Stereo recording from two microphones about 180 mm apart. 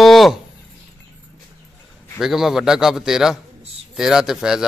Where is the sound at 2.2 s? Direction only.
Centre (ahead or behind).